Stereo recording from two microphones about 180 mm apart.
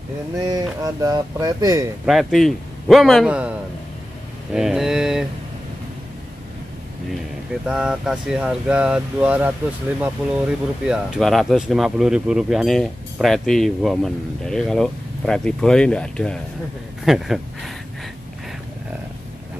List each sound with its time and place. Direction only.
0.5 s speech: 20° right (ahead or behind)
2.0 s speech: centre (ahead or behind)
4.6 s speech: centre (ahead or behind)
7.6 s speech: 5° right (ahead or behind)